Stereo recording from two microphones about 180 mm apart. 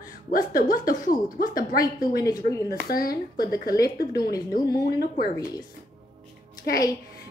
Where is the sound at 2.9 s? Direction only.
55° left (ahead or behind).